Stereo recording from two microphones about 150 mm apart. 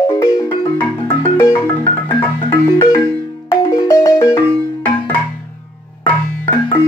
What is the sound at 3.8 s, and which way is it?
Music, 20° left (ahead or behind).